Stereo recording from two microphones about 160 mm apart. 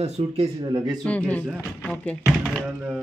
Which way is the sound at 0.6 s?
30° right (ahead or behind).